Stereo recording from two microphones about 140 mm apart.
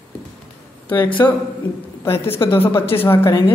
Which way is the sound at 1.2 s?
25° left (ahead or behind).